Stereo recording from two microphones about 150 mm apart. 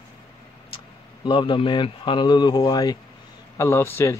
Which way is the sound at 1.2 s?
30° left (ahead or behind).